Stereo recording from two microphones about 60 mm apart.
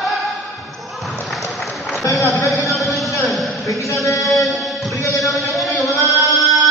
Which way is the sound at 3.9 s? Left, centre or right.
Left.